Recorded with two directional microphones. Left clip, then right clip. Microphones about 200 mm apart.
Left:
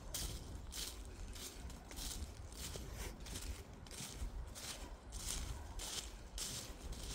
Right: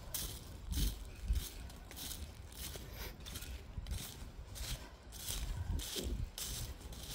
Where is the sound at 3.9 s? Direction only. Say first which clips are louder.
Right 1 dB; 55° right (ahead or behind).